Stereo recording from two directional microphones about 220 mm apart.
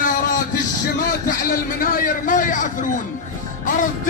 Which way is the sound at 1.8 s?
40° left (ahead or behind).